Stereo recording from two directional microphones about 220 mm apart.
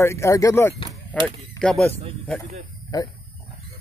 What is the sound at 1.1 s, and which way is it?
Speech, 25° right (ahead or behind).